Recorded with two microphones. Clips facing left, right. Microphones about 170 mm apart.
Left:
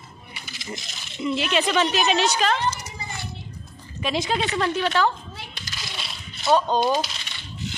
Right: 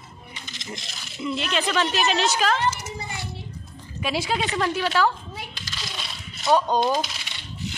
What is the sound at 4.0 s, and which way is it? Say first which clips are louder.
Speech: left 1 dB; 5° right (ahead or behind).